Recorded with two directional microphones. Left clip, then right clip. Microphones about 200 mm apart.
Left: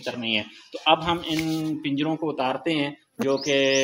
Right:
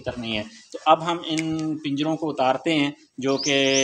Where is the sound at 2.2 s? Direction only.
30° right (ahead or behind).